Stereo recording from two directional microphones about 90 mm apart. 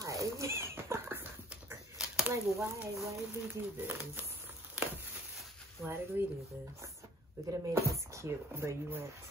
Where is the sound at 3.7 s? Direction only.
20° right (ahead or behind).